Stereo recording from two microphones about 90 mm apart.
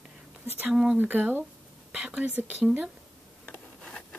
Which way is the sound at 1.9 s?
10° right (ahead or behind).